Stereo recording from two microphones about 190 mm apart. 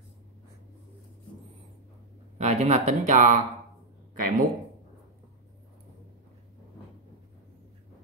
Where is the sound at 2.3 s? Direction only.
35° right (ahead or behind).